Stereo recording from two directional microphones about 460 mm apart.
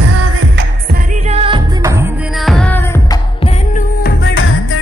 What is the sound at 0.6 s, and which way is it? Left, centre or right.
Music, centre.